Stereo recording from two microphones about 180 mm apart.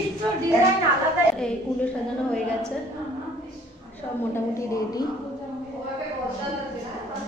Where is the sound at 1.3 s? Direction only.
5° left (ahead or behind).